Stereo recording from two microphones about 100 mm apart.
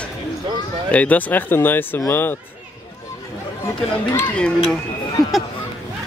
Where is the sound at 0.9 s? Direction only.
15° left (ahead or behind).